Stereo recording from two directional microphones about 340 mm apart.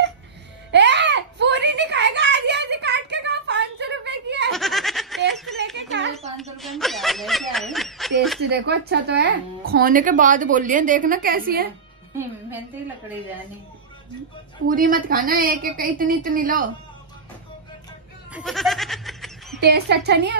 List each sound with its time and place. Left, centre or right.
0.7 s a sound: right
4.5 s snicker: centre
5.3 s a sound: centre
5.8 s a sound: right
6.6 s snicker: centre
8.5 s speech: right
14.7 s speech: right
18.3 s goat: centre
19.6 s speech: right